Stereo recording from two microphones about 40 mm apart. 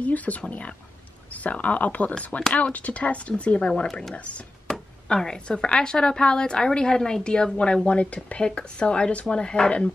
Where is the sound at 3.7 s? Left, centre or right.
Centre.